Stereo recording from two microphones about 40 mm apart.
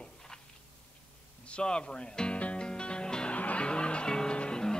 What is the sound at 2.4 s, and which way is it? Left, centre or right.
Music, left.